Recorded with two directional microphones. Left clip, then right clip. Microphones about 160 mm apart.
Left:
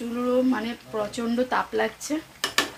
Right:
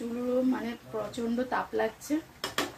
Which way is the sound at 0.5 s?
25° left (ahead or behind).